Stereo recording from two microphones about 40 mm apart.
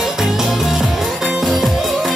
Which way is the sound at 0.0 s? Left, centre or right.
Centre.